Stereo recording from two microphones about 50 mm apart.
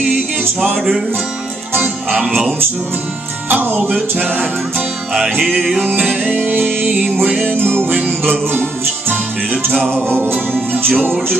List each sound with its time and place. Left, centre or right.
0.7 s music: centre
4.2 s music: right
5.5 s music: centre
5.8 s music: right
7.4 s music: right
10.3 s music: right